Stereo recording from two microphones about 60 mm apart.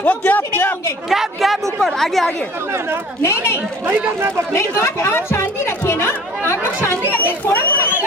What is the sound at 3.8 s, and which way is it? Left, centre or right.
Speech, right.